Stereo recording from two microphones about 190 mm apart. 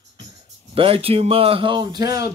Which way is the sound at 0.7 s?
30° right (ahead or behind).